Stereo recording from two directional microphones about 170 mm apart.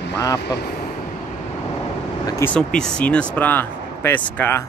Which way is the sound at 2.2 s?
15° left (ahead or behind).